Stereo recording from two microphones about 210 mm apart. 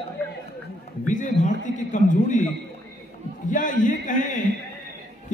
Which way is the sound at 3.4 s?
35° left (ahead or behind).